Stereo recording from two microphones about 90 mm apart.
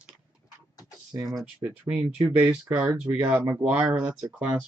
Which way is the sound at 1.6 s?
20° right (ahead or behind).